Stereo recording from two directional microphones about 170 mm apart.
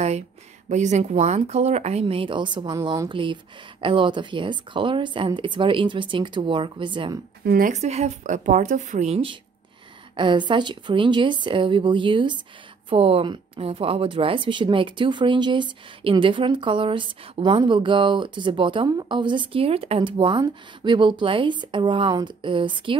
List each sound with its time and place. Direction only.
0.7 s a woman's voice: 45° right (ahead or behind); by 7.2 s 25° right (ahead or behind)
7.4 s a woman's voice: 55° right (ahead or behind); by 22.9 s 30° right (ahead or behind)